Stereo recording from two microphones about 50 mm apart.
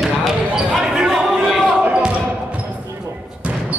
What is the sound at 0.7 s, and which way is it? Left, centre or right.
Basketball bounce, centre.